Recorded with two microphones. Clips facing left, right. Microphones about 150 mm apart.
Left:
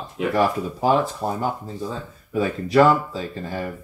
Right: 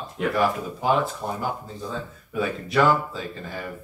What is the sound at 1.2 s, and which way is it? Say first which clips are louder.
Speech: left 4 dB; 35° left (ahead or behind).